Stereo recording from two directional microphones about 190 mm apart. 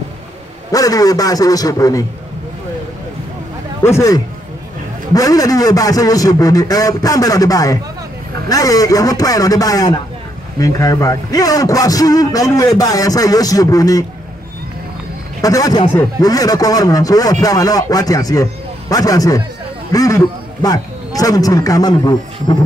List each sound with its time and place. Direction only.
0.7 s a man's voice: 20° left (ahead or behind)
3.8 s a man's voice: 15° left (ahead or behind)
15.4 s a man's voice: 20° left (ahead or behind)